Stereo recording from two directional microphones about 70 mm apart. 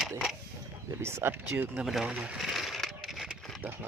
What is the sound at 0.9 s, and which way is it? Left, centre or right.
Speech, right.